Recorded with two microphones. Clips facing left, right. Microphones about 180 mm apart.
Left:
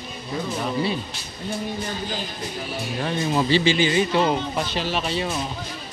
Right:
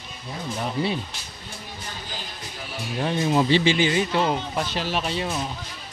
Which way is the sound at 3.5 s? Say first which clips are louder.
Even; 60° right (ahead or behind).